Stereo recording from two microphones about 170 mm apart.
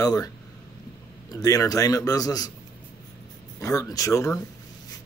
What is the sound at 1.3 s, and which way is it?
Speech, 20° left (ahead or behind).